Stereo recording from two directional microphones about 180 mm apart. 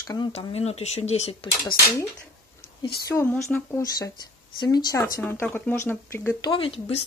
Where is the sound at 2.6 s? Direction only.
60° left (ahead or behind).